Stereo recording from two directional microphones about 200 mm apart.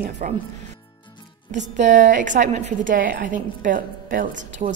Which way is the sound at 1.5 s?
40° right (ahead or behind).